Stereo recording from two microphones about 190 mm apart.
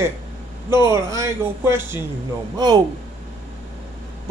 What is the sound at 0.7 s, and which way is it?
A man's voice, 15° right (ahead or behind).